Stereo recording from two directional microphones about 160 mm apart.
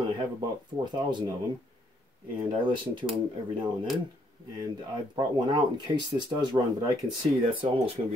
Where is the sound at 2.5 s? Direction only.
30° right (ahead or behind).